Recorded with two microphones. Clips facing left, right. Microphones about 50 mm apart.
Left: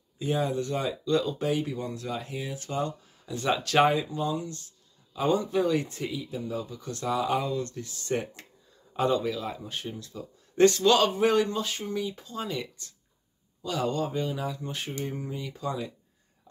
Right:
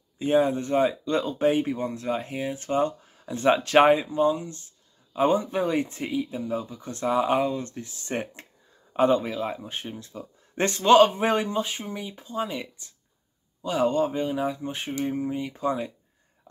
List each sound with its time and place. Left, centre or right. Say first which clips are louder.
0.2 s speech: right 6 dB; right